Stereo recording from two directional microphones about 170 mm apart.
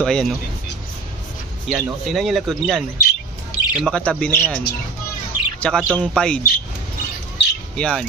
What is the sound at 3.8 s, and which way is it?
Speech, 5° left (ahead or behind).